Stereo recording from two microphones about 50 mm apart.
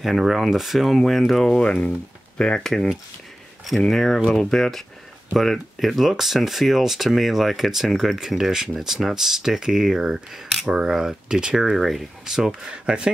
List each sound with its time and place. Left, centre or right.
0.0 s speech: centre
1.6 s speech: left
2.6 s speech: centre
11.7 s speech: centre